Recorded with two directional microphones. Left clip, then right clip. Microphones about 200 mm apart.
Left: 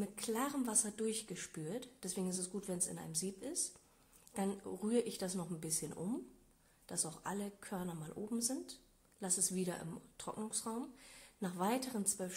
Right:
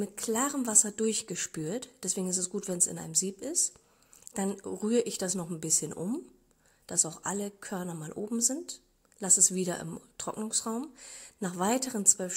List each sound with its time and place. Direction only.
0.0 s a woman's voice: 35° right (ahead or behind)